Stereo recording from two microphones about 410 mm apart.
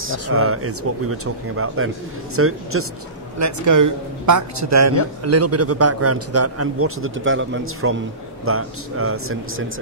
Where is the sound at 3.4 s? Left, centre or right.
Right.